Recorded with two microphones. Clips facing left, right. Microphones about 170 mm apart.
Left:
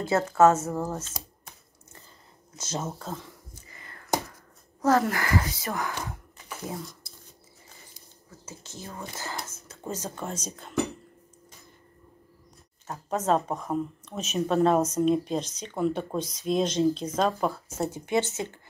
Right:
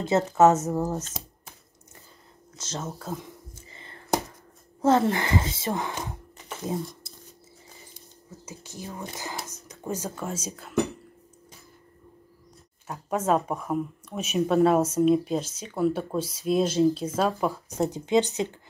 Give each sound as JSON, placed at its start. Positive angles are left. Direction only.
{"t": 0.0, "sound": "speech", "side_deg": -20}
{"t": 2.5, "sound": "speech", "side_deg": 10}
{"t": 3.0, "sound": "speech", "side_deg": -10}
{"t": 3.5, "sound": "a sound", "side_deg": -25}
{"t": 4.8, "sound": "speech", "side_deg": -25}
{"t": 8.5, "sound": "speech", "side_deg": -15}
{"t": 12.8, "sound": "speech", "side_deg": -10}